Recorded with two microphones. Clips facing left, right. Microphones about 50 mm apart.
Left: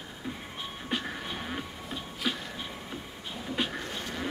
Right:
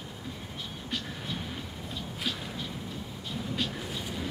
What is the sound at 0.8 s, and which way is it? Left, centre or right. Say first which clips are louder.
Music: left 3 dB; left.